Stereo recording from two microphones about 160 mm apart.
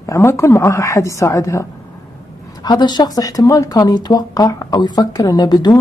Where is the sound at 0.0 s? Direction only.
20° left (ahead or behind).